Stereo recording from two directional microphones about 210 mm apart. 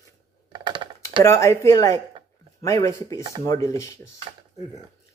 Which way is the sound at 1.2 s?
15° left (ahead or behind).